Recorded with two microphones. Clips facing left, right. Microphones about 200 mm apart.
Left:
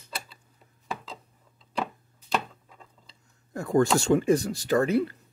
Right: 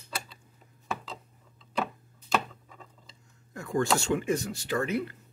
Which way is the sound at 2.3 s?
Centre (ahead or behind).